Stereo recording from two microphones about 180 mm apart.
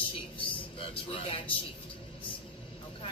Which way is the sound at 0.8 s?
30° left (ahead or behind).